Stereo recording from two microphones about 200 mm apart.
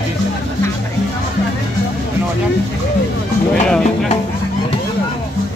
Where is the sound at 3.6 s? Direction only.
5° left (ahead or behind).